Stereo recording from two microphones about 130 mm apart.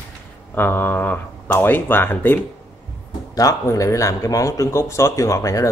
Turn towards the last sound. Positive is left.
turn(degrees=25)  # may be behind; listen again after turning